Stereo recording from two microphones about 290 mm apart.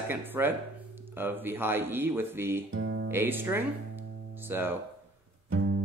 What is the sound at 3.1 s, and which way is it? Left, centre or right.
Speech, centre.